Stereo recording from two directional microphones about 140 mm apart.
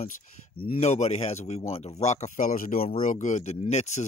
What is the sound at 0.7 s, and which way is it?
Speech, 55° left (ahead or behind).